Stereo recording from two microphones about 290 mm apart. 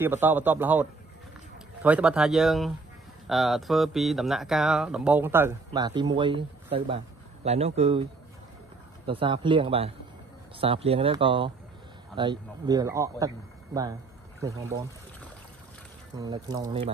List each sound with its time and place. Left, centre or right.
0.0 s speech: centre
14.4 s speech: centre
16.2 s speech: centre